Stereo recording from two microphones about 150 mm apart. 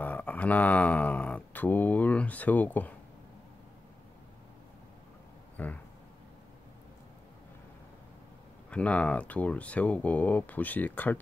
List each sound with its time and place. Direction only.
0.0 s speech: 10° left (ahead or behind)
5.6 s speech: 10° left (ahead or behind)
8.6 s speech: 10° left (ahead or behind)